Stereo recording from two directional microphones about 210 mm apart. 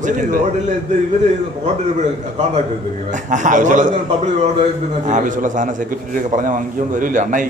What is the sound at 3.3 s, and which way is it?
Speech, 35° right (ahead or behind).